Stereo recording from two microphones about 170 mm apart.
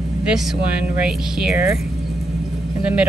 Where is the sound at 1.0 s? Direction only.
5° right (ahead or behind).